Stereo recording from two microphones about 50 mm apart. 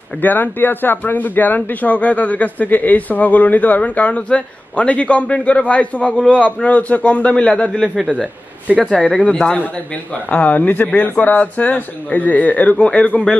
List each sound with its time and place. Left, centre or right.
0.2 s a man's voice: left; by 7.9 s centre
9.3 s a man's voice: centre
10.3 s speech: left
12.8 s a man's voice: left